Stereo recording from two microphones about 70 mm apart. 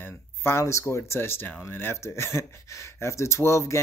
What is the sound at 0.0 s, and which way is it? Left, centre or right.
Speech, left.